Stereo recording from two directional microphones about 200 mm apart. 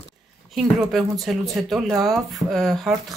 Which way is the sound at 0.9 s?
Centre (ahead or behind).